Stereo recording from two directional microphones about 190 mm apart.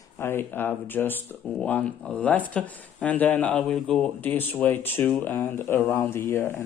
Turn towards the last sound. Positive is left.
turn(degrees=10)  # may be behind; listen again after turning